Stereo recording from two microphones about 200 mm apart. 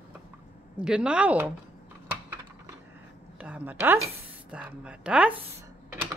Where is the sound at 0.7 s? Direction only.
5° right (ahead or behind).